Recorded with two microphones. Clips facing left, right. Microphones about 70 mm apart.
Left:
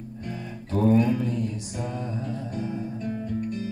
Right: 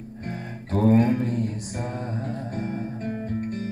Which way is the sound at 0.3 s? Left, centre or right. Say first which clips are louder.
Right 2 dB; right.